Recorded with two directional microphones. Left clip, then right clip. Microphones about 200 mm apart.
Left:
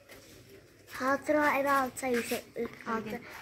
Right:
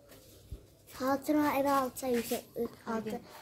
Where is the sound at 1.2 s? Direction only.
55° right (ahead or behind).